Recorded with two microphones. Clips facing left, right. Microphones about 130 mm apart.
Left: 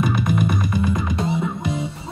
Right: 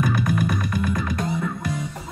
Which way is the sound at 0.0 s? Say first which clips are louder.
Left 2 dB; 20° left (ahead or behind).